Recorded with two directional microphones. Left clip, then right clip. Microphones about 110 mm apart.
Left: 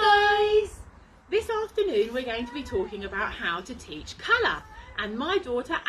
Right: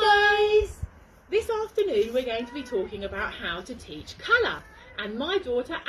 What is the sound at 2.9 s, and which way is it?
A woman's voice, 30° left (ahead or behind).